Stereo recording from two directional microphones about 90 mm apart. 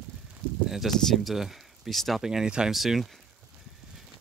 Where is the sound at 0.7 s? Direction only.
Centre (ahead or behind).